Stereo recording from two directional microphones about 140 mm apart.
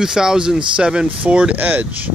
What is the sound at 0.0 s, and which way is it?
Speech, 5° right (ahead or behind).